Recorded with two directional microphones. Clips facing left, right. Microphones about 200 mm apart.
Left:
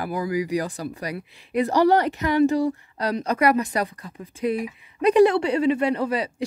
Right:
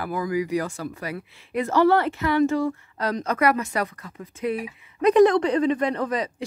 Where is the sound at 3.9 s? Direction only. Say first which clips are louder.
Left 1 dB; 30° left (ahead or behind).